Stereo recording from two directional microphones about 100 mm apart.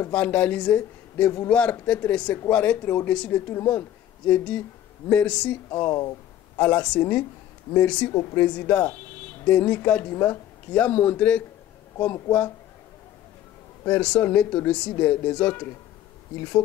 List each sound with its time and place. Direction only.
0.1 s speech: 15° left (ahead or behind)
4.3 s speech: 15° left (ahead or behind)
5.7 s speech: 30° left (ahead or behind)
6.6 s speech: 15° left (ahead or behind)
8.1 s a woman's voice: 30° left (ahead or behind)
8.4 s speech: 15° left (ahead or behind)
13.8 s speech: 15° left (ahead or behind)